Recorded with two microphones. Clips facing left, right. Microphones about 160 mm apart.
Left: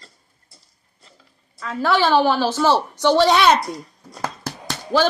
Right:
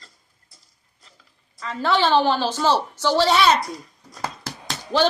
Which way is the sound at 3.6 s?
35° left (ahead or behind).